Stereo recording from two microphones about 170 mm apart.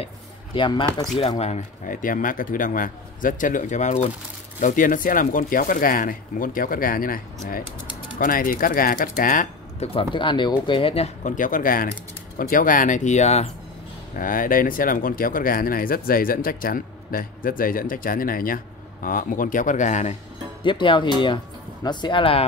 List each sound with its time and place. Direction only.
0.6 s speech: 25° left (ahead or behind)
1.4 s a man's voice: 45° left (ahead or behind)
8.2 s speech: 55° left (ahead or behind)
9.8 s speech: 30° left (ahead or behind)
11.2 s a man's voice: 50° left (ahead or behind)
14.1 s a man's voice: 55° left (ahead or behind)
20.6 s speech: 30° left (ahead or behind)